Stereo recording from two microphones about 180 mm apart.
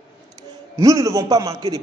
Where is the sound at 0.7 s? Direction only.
20° right (ahead or behind).